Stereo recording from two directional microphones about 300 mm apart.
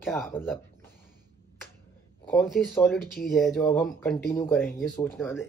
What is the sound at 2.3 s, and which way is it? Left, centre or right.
Speech, centre.